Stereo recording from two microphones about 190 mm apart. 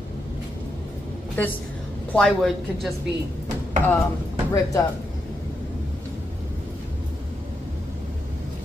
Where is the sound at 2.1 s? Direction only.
5° left (ahead or behind).